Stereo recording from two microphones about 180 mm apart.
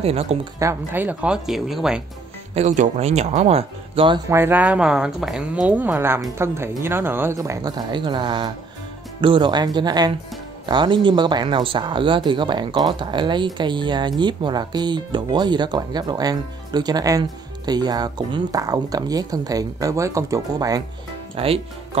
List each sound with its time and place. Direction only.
0.0 s speech: 35° right (ahead or behind)
0.6 s speech: 15° right (ahead or behind)
2.5 s speech: 40° right (ahead or behind)
4.3 s speech: 10° right (ahead or behind)
21.4 s speech: 30° right (ahead or behind)